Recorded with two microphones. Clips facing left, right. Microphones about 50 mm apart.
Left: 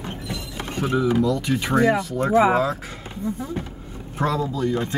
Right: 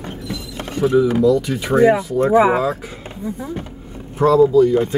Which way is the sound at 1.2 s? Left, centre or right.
Centre.